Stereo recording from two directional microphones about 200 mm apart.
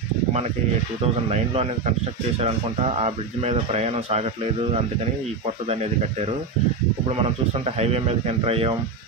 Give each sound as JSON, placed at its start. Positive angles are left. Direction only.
{"t": 1.3, "sound": "speech", "side_deg": -30}
{"t": 3.0, "sound": "speech", "side_deg": -35}
{"t": 5.7, "sound": "speech", "side_deg": -30}
{"t": 7.6, "sound": "speech", "side_deg": -30}